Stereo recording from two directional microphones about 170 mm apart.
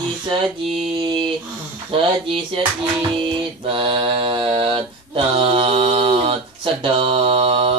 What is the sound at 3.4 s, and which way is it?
Mantra, 30° right (ahead or behind).